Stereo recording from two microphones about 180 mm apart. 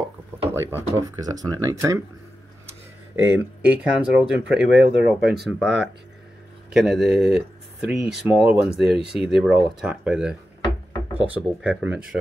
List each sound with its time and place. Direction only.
0.5 s a sound: 10° right (ahead or behind)
1.0 s speech: 20° right (ahead or behind)
3.2 s speech: 10° right (ahead or behind)
11.3 s speech: 5° right (ahead or behind)